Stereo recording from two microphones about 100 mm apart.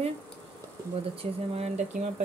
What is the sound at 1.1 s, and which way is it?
Speech, 85° right.